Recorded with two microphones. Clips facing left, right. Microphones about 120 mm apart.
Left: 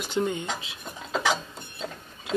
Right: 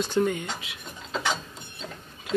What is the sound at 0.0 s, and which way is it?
Speech, 20° left (ahead or behind).